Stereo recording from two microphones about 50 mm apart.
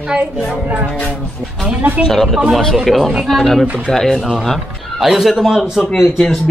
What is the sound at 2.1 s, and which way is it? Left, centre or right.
A man's voice, centre.